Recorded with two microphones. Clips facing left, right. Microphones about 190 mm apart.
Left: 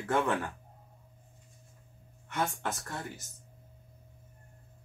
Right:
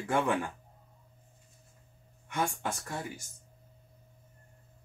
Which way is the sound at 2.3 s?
15° right (ahead or behind).